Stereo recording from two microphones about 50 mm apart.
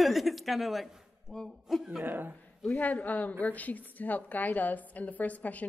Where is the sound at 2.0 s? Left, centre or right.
Right.